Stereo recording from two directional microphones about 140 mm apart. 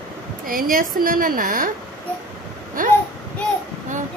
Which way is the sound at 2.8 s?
70° right (ahead or behind).